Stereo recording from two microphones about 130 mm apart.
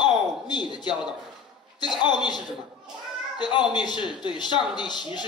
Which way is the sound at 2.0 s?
35° left (ahead or behind).